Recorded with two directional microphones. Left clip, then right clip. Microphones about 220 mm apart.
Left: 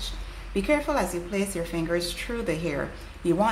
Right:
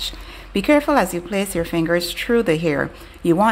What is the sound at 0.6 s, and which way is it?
A woman's voice, 40° right (ahead or behind).